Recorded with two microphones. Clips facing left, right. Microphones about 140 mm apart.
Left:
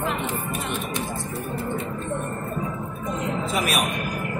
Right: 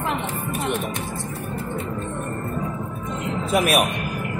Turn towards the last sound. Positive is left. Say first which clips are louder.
# right 5 dB
turn(degrees=-60)  # may be behind; listen again after turning